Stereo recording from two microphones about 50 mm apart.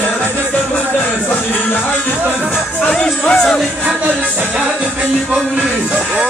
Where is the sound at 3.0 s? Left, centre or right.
Centre.